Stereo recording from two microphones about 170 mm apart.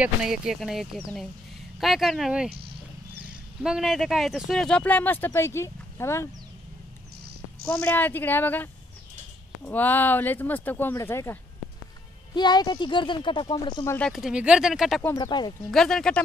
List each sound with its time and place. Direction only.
0.0 s speech: 5° right (ahead or behind)
3.6 s speech: 5° right (ahead or behind); by 6.2 s 15° left (ahead or behind)
7.8 s speech: 10° left (ahead or behind)
12.4 s speech: 25° left (ahead or behind)
13.9 s speech: centre (ahead or behind)
15.1 s speech: 25° left (ahead or behind)
15.7 s speech: 5° left (ahead or behind)